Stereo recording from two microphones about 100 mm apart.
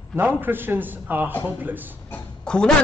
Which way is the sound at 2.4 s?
10° left (ahead or behind).